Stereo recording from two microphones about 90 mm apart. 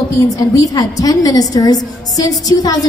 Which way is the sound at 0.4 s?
45° left (ahead or behind).